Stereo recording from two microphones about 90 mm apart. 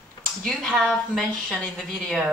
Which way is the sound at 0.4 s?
Centre (ahead or behind).